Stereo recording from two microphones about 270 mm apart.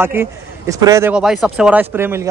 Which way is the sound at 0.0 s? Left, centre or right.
Centre.